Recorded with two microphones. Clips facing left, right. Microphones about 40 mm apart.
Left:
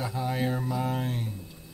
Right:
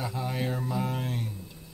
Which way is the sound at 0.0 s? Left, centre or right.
Centre.